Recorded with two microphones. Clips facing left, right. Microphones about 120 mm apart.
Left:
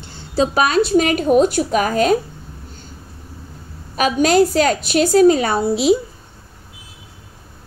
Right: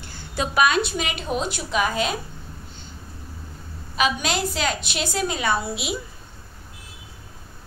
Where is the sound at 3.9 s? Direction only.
45° left (ahead or behind).